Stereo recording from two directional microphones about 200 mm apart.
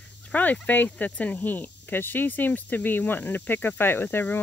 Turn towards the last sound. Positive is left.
turn(degrees=10)  # may be behind; listen again after turning